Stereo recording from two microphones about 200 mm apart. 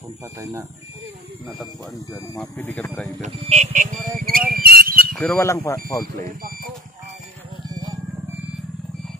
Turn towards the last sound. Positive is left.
turn(degrees=-20)  # may be behind; listen again after turning